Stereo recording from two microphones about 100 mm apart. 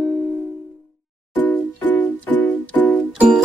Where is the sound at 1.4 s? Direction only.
15° left (ahead or behind).